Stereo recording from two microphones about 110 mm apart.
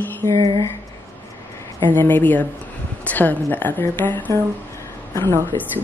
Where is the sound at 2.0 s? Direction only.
15° left (ahead or behind).